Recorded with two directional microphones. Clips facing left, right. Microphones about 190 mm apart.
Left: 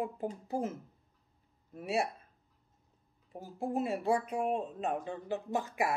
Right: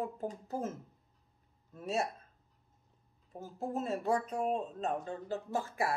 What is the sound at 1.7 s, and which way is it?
Speech, 10° left (ahead or behind).